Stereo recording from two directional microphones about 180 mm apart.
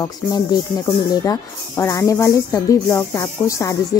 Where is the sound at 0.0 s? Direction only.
20° left (ahead or behind).